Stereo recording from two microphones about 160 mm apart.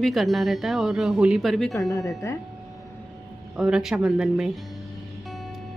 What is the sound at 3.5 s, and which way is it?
Speech, 5° right (ahead or behind).